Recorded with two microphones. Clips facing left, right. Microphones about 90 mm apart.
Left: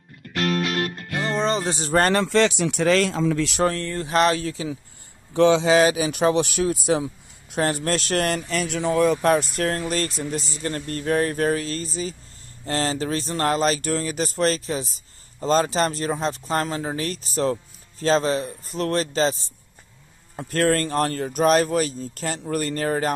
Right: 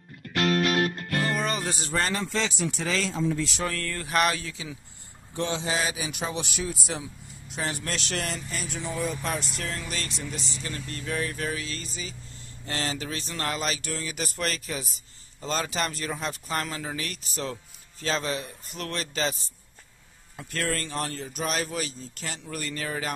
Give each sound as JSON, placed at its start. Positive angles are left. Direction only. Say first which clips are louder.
{"t": 1.1, "sound": "music", "louder": "left 7 dB", "side_deg": 20}
{"t": 2.0, "sound": "speech", "louder": "left 10 dB", "side_deg": 65}
{"t": 3.7, "sound": "speech", "louder": "left 5 dB", "side_deg": 25}
{"t": 5.3, "sound": "speech", "louder": "left 13 dB", "side_deg": 90}
{"t": 8.8, "sound": "speech", "louder": "left 12 dB", "side_deg": 75}
{"t": 20.3, "sound": "speech", "louder": "left 10 dB", "side_deg": 45}